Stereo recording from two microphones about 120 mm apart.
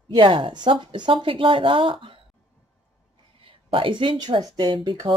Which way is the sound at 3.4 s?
50° right (ahead or behind).